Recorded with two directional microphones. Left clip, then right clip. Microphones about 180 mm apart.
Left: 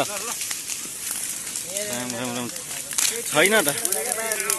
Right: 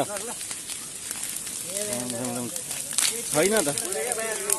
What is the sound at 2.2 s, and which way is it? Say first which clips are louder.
Speech: left 3 dB; 10° left (ahead or behind).